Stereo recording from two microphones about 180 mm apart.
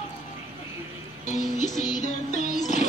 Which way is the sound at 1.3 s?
40° left (ahead or behind).